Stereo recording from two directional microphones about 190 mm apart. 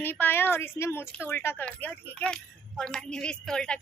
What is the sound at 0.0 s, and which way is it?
Speech, 10° left (ahead or behind).